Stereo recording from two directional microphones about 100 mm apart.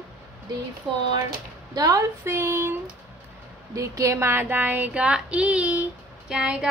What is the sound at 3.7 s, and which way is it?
Child singing, 30° right (ahead or behind).